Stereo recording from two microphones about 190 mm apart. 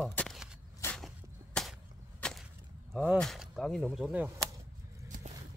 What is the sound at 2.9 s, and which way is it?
Speech, 5° left (ahead or behind).